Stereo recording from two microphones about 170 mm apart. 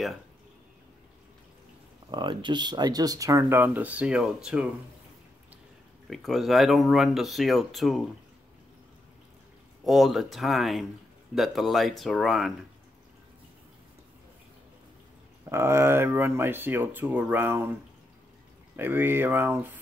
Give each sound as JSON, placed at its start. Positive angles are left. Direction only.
{"t": 2.0, "sound": "speech", "side_deg": -25}
{"t": 6.0, "sound": "speech", "side_deg": 0}
{"t": 9.8, "sound": "speech", "side_deg": 0}
{"t": 15.5, "sound": "speech", "side_deg": -15}
{"t": 18.8, "sound": "speech", "side_deg": -10}